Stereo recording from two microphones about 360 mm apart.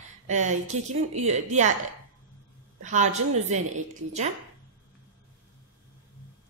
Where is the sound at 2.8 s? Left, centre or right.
Centre.